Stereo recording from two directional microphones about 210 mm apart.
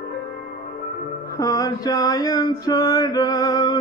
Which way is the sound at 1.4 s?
15° left (ahead or behind).